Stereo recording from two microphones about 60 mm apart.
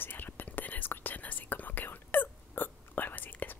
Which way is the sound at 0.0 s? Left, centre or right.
Left.